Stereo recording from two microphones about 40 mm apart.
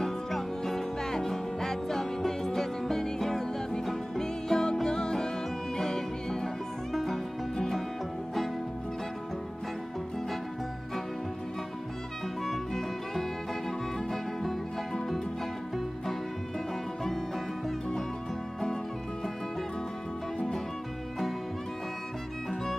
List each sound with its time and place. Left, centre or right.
0.0 s music: centre
6.9 s music: centre
12.7 s music: centre
15.0 s music: centre